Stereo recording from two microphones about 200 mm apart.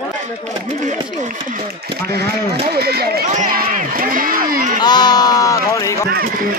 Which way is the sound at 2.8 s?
50° right (ahead or behind).